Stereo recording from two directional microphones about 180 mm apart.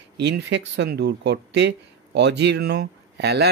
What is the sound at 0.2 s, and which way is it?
Speech, 70° right (ahead or behind).